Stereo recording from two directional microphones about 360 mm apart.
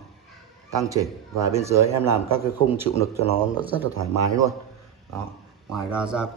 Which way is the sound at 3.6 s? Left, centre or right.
Centre.